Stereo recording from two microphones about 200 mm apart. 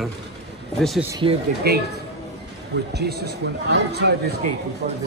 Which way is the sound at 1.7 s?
50° right (ahead or behind).